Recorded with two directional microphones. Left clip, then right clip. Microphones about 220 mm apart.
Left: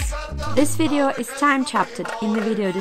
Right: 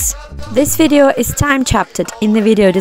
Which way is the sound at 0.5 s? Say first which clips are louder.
Right 10 dB; 30° right (ahead or behind).